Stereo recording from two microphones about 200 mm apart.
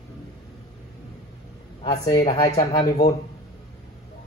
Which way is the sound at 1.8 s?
20° left (ahead or behind).